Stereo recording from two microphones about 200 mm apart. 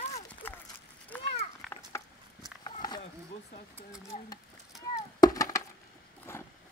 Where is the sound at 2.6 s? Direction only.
20° left (ahead or behind).